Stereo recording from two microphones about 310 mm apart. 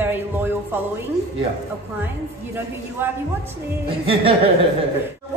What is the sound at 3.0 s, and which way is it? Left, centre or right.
Speech, centre.